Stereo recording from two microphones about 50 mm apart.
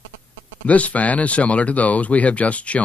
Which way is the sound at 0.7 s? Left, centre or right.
Left.